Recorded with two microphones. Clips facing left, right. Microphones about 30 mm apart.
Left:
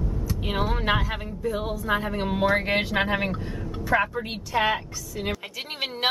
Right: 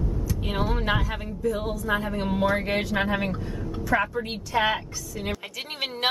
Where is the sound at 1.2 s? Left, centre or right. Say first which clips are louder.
Right 1 dB; centre.